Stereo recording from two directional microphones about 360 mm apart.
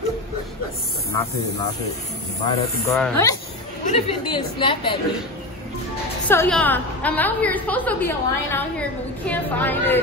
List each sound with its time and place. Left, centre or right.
2.4 s speech: centre
6.2 s a woman's voice: centre